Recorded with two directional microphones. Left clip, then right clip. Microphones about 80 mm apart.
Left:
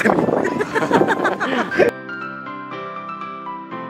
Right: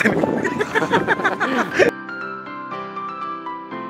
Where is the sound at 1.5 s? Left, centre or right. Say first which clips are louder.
Even; right.